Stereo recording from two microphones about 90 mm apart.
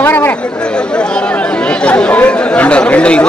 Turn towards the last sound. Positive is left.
turn(degrees=15)  # may be behind; listen again after turning